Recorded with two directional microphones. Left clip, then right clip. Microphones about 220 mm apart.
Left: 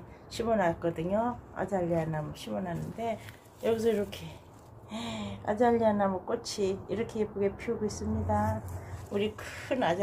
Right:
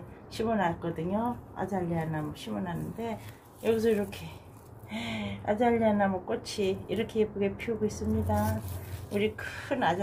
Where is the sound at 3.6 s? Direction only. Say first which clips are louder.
Right 1 dB; 30° left (ahead or behind).